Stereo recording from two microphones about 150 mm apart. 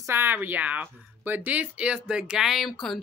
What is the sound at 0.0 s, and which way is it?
Speech, 15° right (ahead or behind).